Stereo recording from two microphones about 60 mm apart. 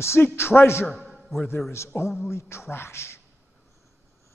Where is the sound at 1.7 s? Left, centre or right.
Left.